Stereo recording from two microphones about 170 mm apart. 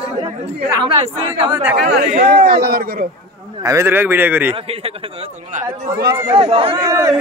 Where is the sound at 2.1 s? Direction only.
65° right (ahead or behind).